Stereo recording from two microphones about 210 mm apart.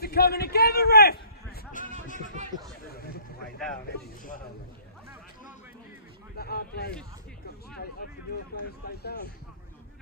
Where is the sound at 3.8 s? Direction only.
50° left (ahead or behind).